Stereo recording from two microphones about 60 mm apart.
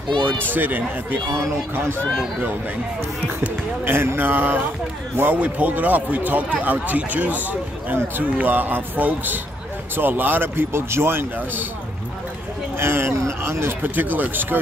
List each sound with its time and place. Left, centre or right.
0.5 s a man's voice: right
3.8 s a man's voice: right
12.7 s speech: right
13.8 s a man's voice: right